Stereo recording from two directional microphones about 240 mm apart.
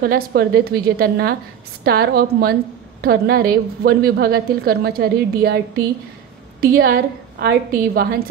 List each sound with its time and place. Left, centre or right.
0.0 s a woman's voice: right
6.6 s a woman's voice: right